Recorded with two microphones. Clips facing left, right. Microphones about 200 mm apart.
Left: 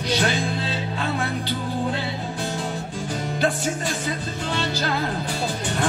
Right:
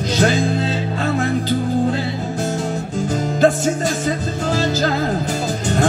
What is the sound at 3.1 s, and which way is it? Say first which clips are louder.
Music: right 8 dB; 45° right (ahead or behind).